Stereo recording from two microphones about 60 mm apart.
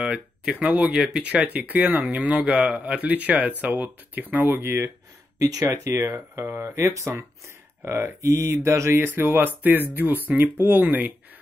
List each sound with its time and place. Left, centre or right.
0.0 s speech: centre
1.5 s speech: right
5.4 s speech: right
6.1 s speech: right
6.6 s speech: right
7.8 s a sound: right
8.2 s a sound: right
9.0 s speech: right